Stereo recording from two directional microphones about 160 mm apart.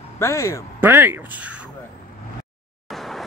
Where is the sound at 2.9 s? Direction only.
Centre (ahead or behind).